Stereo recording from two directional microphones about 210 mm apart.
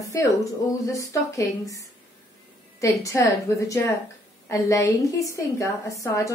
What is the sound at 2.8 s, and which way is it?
A woman's voice, 15° left (ahead or behind).